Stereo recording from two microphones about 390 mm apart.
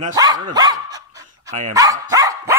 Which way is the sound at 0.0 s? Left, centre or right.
Centre.